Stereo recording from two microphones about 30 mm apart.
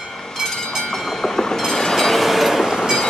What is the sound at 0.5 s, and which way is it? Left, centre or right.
Train, left.